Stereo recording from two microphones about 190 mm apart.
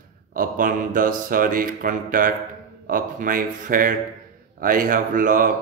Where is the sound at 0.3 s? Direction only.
45° right (ahead or behind).